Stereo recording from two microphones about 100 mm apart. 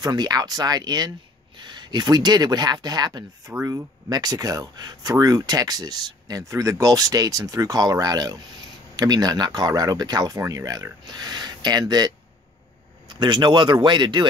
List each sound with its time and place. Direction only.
0.0 s speech: 45° right (ahead or behind)
13.1 s speech: 50° right (ahead or behind)